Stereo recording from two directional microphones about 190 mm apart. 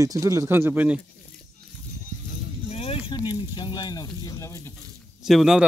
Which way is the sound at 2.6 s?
30° left (ahead or behind).